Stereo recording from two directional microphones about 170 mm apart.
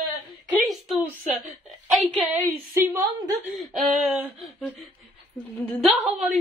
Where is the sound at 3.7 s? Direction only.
Centre (ahead or behind).